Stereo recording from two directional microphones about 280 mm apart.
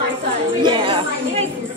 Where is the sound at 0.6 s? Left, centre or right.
Centre.